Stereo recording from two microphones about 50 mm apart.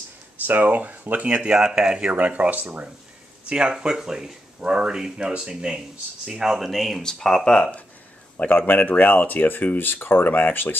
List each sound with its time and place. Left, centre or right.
0.5 s speech: right
1.2 s speech: right
2.1 s speech: right
3.4 s speech: centre
7.0 s speech: centre
8.5 s speech: left